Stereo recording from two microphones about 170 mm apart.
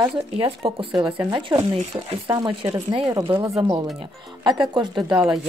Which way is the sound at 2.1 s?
30° right (ahead or behind).